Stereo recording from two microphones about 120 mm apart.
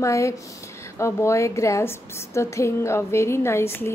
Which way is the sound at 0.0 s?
25° left (ahead or behind).